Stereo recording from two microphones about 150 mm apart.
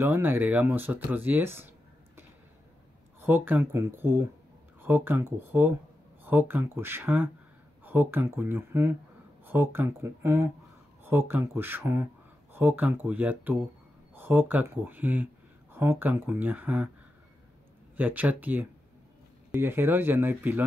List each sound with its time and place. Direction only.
0.0 s speech: 15° right (ahead or behind)
3.2 s speech: 15° right (ahead or behind)
17.9 s speech: 10° right (ahead or behind)